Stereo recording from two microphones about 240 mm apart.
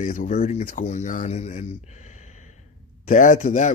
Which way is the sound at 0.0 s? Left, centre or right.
Left.